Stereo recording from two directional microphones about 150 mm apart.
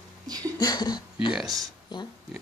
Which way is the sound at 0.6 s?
25° left (ahead or behind).